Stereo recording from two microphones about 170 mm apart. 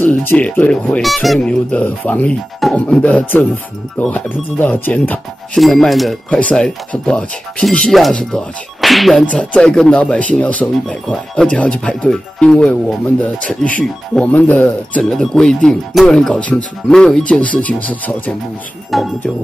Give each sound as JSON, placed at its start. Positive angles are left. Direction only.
{"t": 0.0, "sound": "speech", "side_deg": 10}